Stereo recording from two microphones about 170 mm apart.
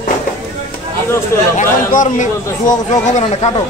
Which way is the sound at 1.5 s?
45° left (ahead or behind).